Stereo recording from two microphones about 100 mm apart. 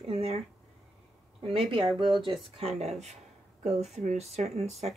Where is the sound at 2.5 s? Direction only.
90° right.